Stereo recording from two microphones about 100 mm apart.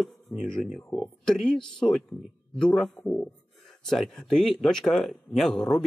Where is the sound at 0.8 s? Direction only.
10° left (ahead or behind).